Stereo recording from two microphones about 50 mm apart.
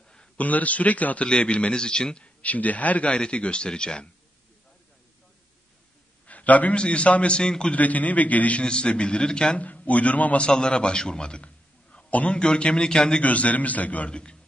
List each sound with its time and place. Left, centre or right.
0.4 s a man's voice: left
2.4 s a man's voice: left
6.2 s a man's voice: left
7.7 s a man's voice: left
9.6 s a man's voice: left
10.4 s a man's voice: centre
13.2 s a man's voice: left
14.1 s a man's voice: centre